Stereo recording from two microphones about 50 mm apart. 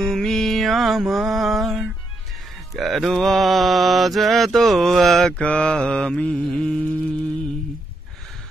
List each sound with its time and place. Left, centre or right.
0.0 s music: centre
2.7 s mantra: centre
5.4 s mantra: left